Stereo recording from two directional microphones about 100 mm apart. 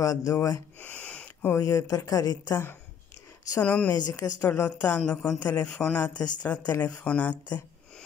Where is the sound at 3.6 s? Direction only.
10° left (ahead or behind).